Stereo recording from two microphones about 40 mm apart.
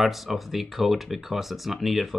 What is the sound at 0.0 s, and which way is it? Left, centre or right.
Speech, centre.